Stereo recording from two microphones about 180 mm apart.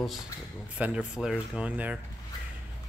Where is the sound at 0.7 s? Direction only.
5° right (ahead or behind).